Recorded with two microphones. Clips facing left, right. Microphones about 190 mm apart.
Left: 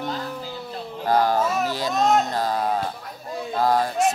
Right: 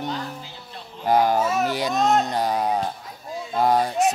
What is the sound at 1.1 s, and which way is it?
Speech, 15° right (ahead or behind).